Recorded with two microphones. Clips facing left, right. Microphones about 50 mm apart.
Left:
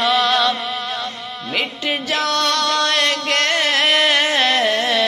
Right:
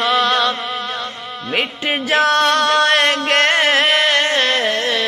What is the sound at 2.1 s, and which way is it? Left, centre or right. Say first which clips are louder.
Music: right 6 dB; right.